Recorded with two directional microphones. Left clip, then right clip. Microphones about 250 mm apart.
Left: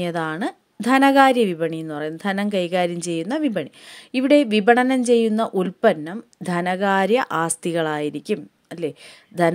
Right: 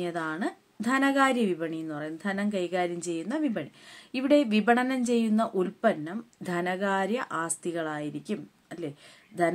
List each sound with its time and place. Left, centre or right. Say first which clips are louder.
0.0 s a woman's voice: left 7 dB; left